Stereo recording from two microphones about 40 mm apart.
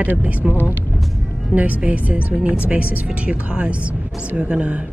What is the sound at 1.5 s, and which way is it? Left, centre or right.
Speech, right.